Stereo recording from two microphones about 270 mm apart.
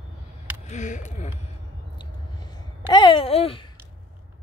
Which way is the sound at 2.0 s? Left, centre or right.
Centre.